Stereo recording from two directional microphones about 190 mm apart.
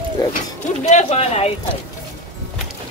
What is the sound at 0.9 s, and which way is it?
Speech, 35° left (ahead or behind).